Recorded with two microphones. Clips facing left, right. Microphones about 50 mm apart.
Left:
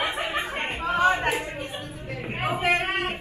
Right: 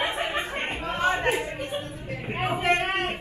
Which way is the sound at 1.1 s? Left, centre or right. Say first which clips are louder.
Even; centre.